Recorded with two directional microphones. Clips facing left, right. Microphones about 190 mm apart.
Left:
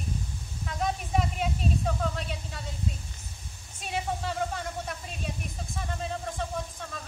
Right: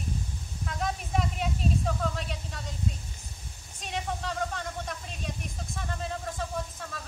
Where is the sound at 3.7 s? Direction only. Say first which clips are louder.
Left 2 dB; 5° left (ahead or behind).